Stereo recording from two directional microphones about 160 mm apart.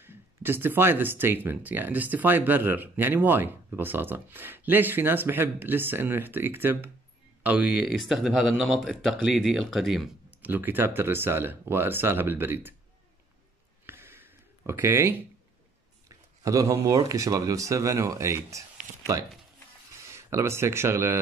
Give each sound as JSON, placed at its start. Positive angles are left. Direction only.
{"t": 0.0, "sound": "speech", "side_deg": -15}
{"t": 10.5, "sound": "speech", "side_deg": -10}
{"t": 13.8, "sound": "a sound", "side_deg": -15}
{"t": 16.4, "sound": "speech", "side_deg": -20}
{"t": 20.1, "sound": "speech", "side_deg": -15}